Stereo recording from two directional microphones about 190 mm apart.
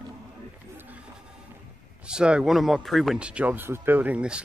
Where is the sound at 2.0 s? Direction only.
5° right (ahead or behind).